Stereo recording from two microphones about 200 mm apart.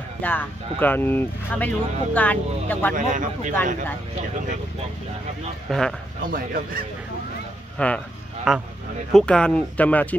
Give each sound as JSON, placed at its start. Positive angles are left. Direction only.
{"t": 0.2, "sound": "speech", "side_deg": 10}
{"t": 3.0, "sound": "speech", "side_deg": -40}
{"t": 5.7, "sound": "speech", "side_deg": 5}
{"t": 6.3, "sound": "speech", "side_deg": -45}
{"t": 7.7, "sound": "speech", "side_deg": 5}